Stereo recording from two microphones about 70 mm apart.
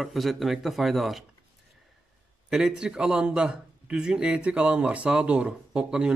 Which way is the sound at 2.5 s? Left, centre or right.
Centre.